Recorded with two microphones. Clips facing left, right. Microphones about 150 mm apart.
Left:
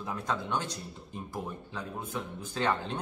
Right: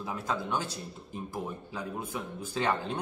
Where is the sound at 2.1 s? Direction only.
10° right (ahead or behind).